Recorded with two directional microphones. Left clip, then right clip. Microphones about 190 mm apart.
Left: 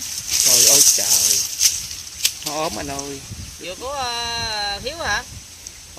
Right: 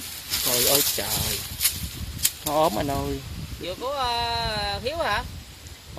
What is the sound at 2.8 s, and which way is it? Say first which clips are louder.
Speech: right 1 dB; 15° right (ahead or behind).